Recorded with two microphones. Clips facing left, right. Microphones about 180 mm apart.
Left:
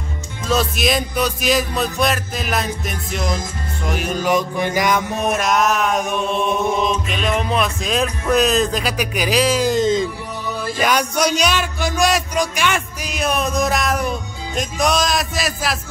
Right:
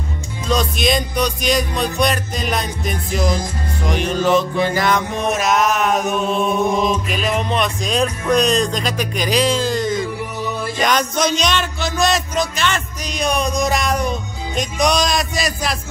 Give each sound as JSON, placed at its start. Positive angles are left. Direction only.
{"t": 0.5, "sound": "speech", "side_deg": 5}
{"t": 9.6, "sound": "music", "side_deg": 20}
{"t": 10.8, "sound": "speech", "side_deg": 10}